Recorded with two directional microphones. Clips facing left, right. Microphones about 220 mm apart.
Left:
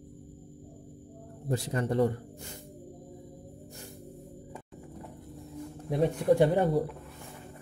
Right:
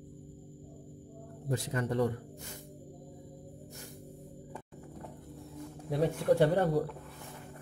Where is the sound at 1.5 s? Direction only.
30° left (ahead or behind).